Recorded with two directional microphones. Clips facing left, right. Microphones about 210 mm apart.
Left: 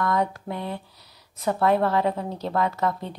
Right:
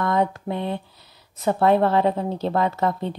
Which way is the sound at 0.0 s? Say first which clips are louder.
Right 3 dB; 25° right (ahead or behind).